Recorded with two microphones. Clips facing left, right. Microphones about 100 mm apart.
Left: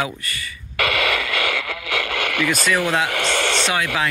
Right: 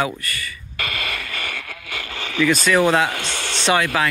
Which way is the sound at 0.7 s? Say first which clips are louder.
Left 8 dB; 90° left.